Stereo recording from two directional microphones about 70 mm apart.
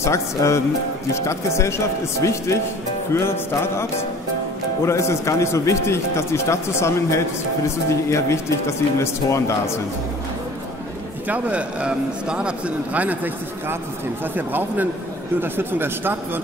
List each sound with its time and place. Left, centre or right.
0.0 s a man's voice: left
3.2 s music: left
4.8 s a man's voice: left
11.2 s a man's voice: right
14.3 s a man's voice: right